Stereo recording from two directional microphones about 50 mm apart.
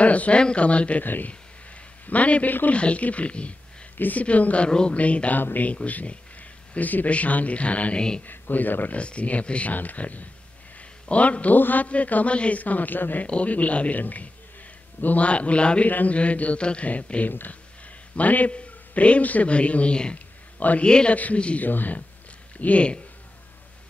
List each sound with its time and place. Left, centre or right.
0.0 s a man's voice: left
1.0 s a man's voice: left
2.0 s a man's voice: left
3.9 s a man's voice: left
4.6 s a man's voice: centre
5.4 s a man's voice: left
5.7 s a man's voice: left
8.3 s a man's voice: left
8.9 s a man's voice: left
13.3 s a man's voice: left
20.5 s speech: left
20.8 s a man's voice: centre
21.6 s a man's voice: left
22.6 s a man's voice: left